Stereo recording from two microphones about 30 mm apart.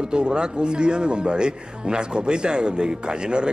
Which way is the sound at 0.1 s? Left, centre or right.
Right.